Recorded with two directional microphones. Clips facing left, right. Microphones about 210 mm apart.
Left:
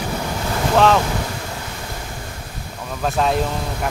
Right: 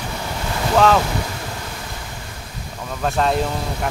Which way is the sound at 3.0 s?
Centre (ahead or behind).